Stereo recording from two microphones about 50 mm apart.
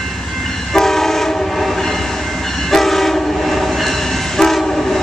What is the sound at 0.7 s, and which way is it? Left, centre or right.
Train, centre.